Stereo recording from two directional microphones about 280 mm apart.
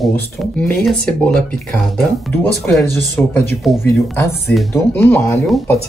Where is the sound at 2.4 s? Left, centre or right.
Centre.